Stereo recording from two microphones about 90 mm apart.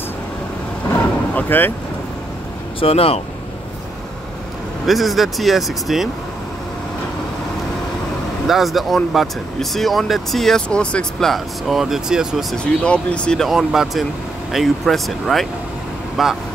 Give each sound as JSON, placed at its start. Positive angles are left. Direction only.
{"t": 1.3, "sound": "speech", "side_deg": 20}
{"t": 2.8, "sound": "speech", "side_deg": 90}
{"t": 4.8, "sound": "speech", "side_deg": 0}
{"t": 8.5, "sound": "speech", "side_deg": 0}
{"t": 12.8, "sound": "speech", "side_deg": 10}
{"t": 13.5, "sound": "speech", "side_deg": -5}